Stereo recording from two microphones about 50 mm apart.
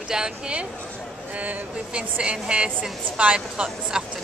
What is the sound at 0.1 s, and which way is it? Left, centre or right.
Speech, centre.